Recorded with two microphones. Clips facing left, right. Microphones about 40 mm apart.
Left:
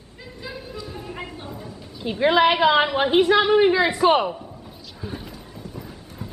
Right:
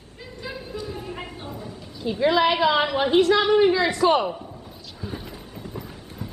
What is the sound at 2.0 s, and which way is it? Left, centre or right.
A woman's voice, left.